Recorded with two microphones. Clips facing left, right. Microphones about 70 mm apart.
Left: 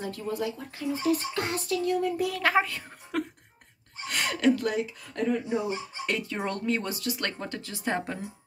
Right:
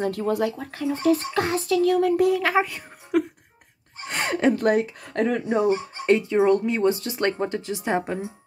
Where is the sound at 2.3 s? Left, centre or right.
Centre.